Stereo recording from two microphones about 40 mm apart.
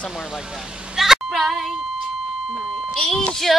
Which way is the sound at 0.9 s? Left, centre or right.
Centre.